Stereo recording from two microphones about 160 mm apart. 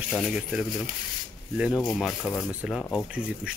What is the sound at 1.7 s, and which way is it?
Speech, centre (ahead or behind).